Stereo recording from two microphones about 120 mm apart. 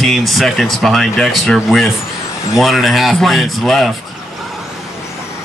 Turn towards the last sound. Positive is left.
turn(degrees=0)  # may be behind; listen again after turning